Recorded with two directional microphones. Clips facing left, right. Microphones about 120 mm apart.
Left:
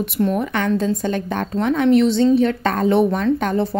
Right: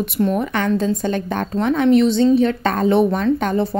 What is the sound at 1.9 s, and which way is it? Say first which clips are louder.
A woman's voice: right 1 dB; 20° right (ahead or behind).